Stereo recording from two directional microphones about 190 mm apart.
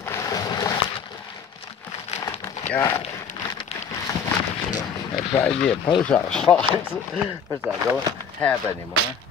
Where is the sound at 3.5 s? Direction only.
20° left (ahead or behind).